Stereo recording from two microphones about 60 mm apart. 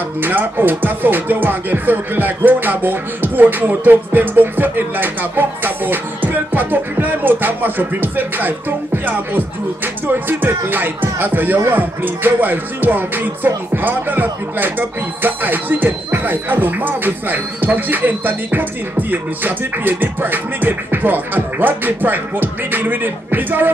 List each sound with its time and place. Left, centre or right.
0.2 s speech: right